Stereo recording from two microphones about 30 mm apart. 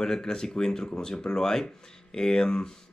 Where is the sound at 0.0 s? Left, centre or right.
Left.